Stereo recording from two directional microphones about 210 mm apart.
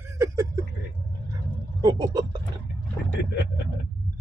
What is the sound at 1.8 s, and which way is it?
Vehicle, 20° right (ahead or behind).